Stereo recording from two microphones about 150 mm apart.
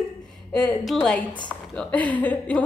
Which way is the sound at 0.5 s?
5° left (ahead or behind).